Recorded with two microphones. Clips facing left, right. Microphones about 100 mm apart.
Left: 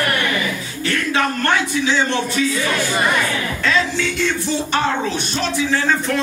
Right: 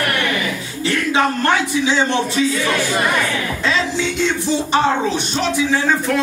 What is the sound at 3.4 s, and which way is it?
Speech, 15° right (ahead or behind).